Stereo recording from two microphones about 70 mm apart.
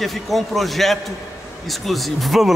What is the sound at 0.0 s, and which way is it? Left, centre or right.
A man's voice, centre.